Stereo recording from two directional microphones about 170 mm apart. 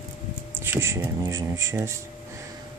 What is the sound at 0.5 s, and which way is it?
Speech, 15° right (ahead or behind).